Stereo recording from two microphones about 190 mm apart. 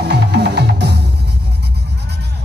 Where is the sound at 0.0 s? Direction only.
60° right (ahead or behind).